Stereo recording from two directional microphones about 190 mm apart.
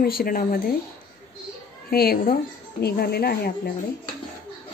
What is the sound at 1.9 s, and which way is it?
A woman's voice, 55° left (ahead or behind).